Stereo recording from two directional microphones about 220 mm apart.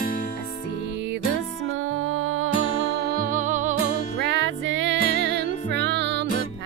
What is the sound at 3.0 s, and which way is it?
Music, 40° right (ahead or behind).